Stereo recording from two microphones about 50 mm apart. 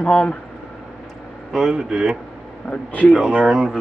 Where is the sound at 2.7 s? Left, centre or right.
Left.